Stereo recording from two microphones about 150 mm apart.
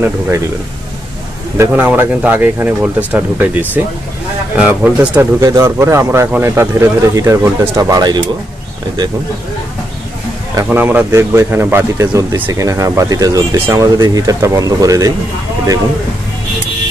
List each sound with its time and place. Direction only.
1.6 s speech: 10° right (ahead or behind)
10.5 s speech: 15° right (ahead or behind)